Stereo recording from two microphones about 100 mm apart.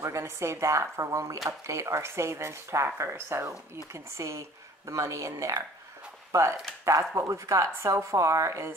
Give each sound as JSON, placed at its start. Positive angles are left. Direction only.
{"t": 0.0, "sound": "speech", "side_deg": -30}
{"t": 6.8, "sound": "speech", "side_deg": -35}